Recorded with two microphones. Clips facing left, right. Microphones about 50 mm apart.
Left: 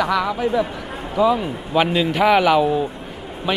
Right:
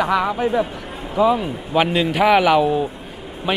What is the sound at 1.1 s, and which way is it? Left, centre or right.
Speech, centre.